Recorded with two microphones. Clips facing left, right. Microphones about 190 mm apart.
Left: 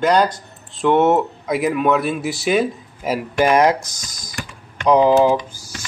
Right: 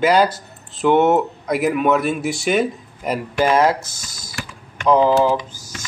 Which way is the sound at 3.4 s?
15° left (ahead or behind).